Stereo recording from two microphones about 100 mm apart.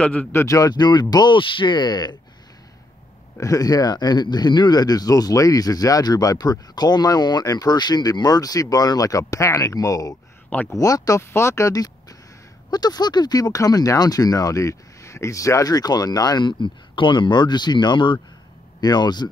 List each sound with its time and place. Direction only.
0.0 s speech: 10° left (ahead or behind)
0.3 s speech: 30° left (ahead or behind); by 2.1 s 45° left (ahead or behind)
3.3 s speech: 35° left (ahead or behind)